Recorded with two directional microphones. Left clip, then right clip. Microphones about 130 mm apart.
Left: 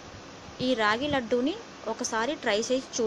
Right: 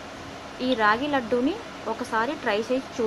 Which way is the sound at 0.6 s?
30° left (ahead or behind).